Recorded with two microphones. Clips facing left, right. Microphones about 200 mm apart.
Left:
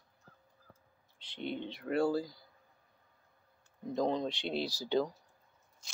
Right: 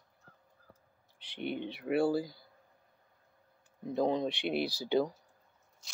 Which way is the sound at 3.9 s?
10° right (ahead or behind).